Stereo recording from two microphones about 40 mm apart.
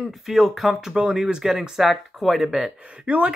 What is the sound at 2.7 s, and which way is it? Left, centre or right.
Speech, right.